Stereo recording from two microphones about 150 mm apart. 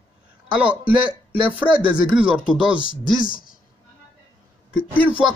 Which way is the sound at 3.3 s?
70° left (ahead or behind).